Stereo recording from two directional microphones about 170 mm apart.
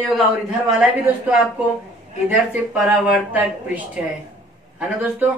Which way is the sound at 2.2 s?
5° right (ahead or behind).